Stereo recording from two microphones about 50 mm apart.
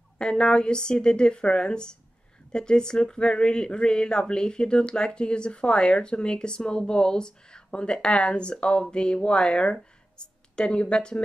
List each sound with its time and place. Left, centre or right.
0.2 s a woman's voice: centre